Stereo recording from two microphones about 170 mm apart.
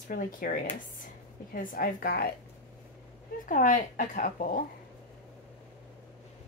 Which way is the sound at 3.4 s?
50° left (ahead or behind).